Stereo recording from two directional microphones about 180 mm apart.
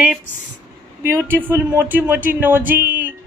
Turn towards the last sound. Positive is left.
turn(degrees=-10)  # may be behind; listen again after turning